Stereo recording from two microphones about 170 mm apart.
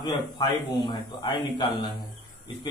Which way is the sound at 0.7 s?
25° left (ahead or behind).